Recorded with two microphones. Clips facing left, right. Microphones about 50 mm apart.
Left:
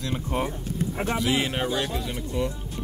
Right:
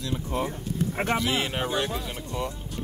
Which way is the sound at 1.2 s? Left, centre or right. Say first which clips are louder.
Left 2 dB; centre.